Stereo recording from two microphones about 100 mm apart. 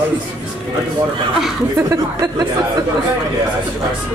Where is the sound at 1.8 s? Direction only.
30° right (ahead or behind).